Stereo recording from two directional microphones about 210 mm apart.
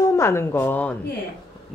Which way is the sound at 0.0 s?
15° left (ahead or behind).